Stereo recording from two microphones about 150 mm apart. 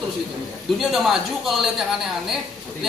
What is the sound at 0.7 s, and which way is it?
Speech, centre (ahead or behind).